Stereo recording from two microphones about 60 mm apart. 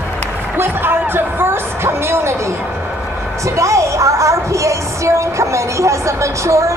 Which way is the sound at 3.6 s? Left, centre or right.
Right.